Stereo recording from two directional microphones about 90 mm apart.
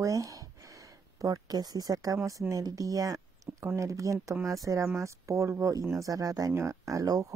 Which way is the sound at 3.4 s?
35° right (ahead or behind).